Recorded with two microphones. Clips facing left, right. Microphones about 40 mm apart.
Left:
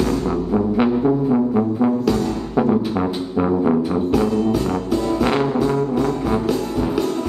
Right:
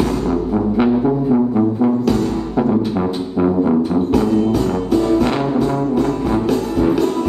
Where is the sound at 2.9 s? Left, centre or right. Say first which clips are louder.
Right 2 dB; centre.